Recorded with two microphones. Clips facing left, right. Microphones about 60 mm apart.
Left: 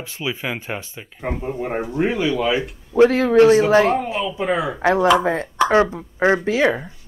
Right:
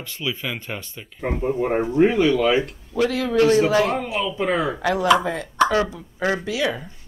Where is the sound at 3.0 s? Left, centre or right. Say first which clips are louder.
Left 6 dB; left.